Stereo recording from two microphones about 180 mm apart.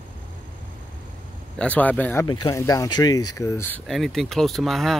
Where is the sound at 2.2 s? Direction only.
20° left (ahead or behind).